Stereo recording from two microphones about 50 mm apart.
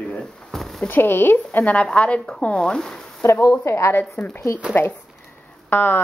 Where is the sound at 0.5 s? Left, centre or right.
Centre.